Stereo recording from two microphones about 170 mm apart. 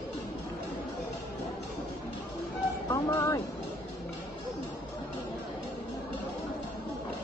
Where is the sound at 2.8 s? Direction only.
15° left (ahead or behind).